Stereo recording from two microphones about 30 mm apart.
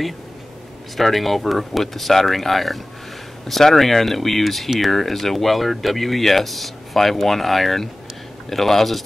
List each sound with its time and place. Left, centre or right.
0.9 s speech: centre